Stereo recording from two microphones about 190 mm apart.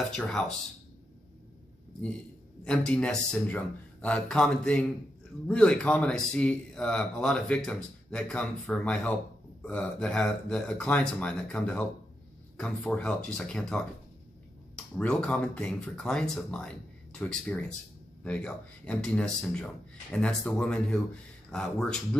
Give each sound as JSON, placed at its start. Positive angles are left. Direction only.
{"t": 0.1, "sound": "speech", "side_deg": 5}
{"t": 2.6, "sound": "speech", "side_deg": 5}
{"t": 15.0, "sound": "speech", "side_deg": 5}